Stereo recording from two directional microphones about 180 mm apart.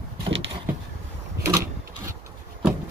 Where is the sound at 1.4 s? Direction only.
15° right (ahead or behind).